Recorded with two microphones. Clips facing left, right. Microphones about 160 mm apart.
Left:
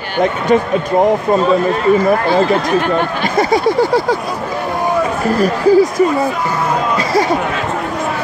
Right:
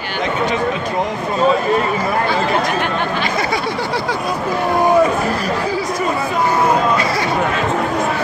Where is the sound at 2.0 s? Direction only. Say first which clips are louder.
Left 6 dB; 45° left (ahead or behind).